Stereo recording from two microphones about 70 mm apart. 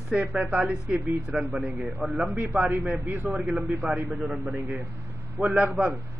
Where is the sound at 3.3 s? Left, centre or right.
Centre.